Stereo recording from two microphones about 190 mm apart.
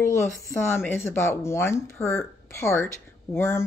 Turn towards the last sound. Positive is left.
turn(degrees=15)  # may be behind; listen again after turning